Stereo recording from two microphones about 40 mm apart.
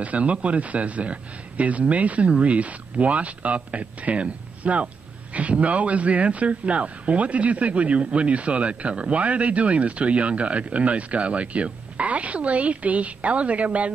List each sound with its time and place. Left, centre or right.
0.0 s speech: right